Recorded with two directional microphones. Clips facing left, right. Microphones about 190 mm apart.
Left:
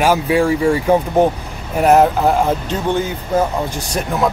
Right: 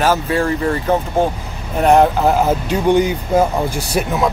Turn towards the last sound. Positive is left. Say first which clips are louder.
# right 1 dB
turn(degrees=-5)  # may be behind; listen again after turning